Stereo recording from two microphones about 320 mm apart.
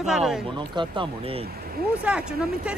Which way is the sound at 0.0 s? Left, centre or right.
Centre.